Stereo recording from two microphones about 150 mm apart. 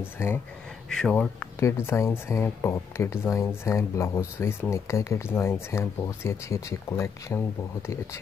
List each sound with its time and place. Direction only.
0.0 s speech: 15° left (ahead or behind)
0.8 s speech: 5° left (ahead or behind)
1.6 s speech: 15° left (ahead or behind)